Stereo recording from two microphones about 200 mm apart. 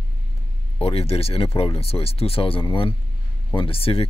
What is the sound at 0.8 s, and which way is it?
Speech, 30° left (ahead or behind).